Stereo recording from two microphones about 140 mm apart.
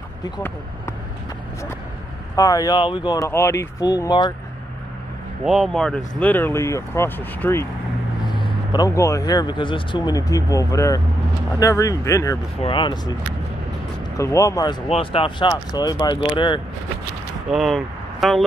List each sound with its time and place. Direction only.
2.3 s speech: 25° left (ahead or behind)
3.3 s speech: 20° left (ahead or behind)
5.4 s speech: centre (ahead or behind); by 7.6 s 15° left (ahead or behind)
8.4 s speech: 35° left (ahead or behind)
12.6 s speech: 35° left (ahead or behind)
14.1 s speech: 20° left (ahead or behind)
14.9 s speech: 40° left (ahead or behind)
17.5 s speech: centre (ahead or behind)